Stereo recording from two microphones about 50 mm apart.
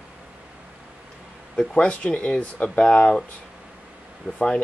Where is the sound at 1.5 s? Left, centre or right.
Left.